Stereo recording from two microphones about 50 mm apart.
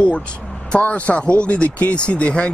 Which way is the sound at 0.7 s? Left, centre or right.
Left.